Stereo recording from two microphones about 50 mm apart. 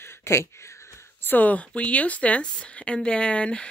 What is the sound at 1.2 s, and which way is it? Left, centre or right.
Speech, left.